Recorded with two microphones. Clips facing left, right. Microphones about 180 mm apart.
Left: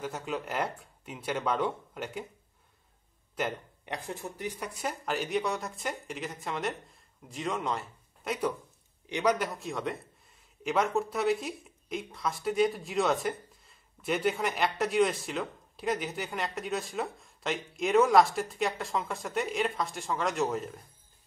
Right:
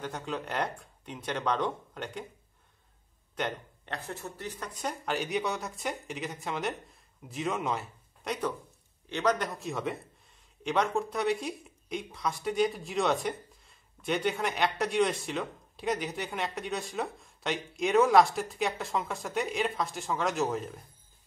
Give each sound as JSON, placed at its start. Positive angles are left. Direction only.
{"t": 0.0, "sound": "speech", "side_deg": 5}
{"t": 3.3, "sound": "speech", "side_deg": 10}